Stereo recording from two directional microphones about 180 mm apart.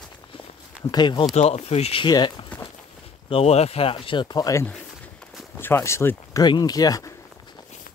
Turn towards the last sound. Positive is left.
turn(degrees=20)  # may be behind; listen again after turning